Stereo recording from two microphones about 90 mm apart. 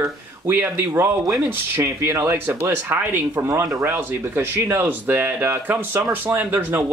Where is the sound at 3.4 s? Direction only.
35° right (ahead or behind).